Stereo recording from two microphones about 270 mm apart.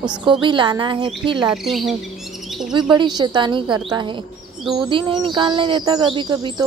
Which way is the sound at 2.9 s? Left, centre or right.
Centre.